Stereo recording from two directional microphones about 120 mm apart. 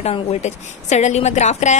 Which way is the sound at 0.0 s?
60° left (ahead or behind).